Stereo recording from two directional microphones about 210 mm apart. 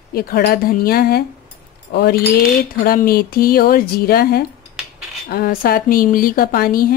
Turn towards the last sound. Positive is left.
turn(degrees=45)  # may be behind; listen again after turning